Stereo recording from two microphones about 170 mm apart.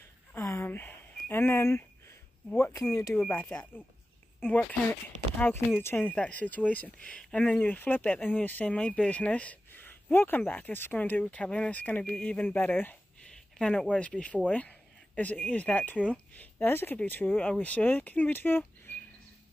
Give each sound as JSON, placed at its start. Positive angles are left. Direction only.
{"t": 0.3, "sound": "a sound", "side_deg": 15}
{"t": 2.5, "sound": "speech", "side_deg": 15}
{"t": 5.8, "sound": "speech", "side_deg": 10}